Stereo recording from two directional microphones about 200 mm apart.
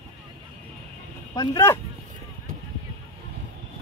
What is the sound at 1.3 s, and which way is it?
Speech, 15° left (ahead or behind).